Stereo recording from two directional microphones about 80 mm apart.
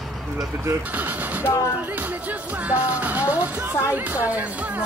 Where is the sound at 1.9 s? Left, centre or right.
Right.